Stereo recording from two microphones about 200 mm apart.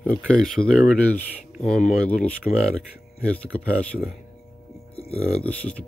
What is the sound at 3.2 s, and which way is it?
Speech, 5° left (ahead or behind).